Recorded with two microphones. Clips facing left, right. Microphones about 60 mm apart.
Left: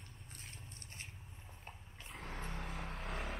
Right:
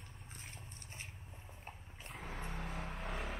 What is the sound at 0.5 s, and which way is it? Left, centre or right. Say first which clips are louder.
Biting: right 1 dB; right.